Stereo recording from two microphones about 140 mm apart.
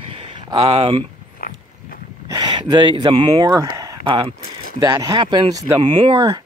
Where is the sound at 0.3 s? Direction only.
35° right (ahead or behind).